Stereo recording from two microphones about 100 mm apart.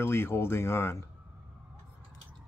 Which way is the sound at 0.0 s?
25° left (ahead or behind).